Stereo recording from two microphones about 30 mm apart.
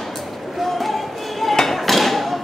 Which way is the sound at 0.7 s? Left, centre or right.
Centre.